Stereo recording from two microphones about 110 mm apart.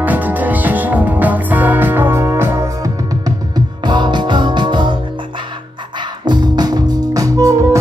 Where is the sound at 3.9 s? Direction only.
45° right (ahead or behind).